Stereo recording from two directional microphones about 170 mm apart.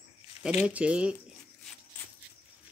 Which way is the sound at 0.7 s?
5° right (ahead or behind).